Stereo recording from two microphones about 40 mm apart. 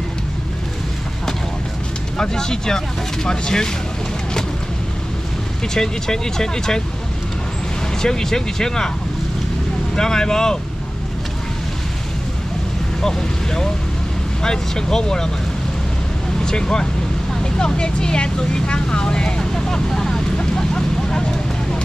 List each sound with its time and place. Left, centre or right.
2.1 s speech: centre
5.8 s speech: centre
8.0 s speech: centre
9.9 s speech: centre
13.0 s speech: centre
16.3 s speech: centre
20.3 s a sound: centre